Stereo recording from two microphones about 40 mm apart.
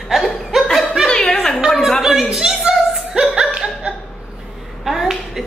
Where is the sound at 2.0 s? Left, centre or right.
Centre.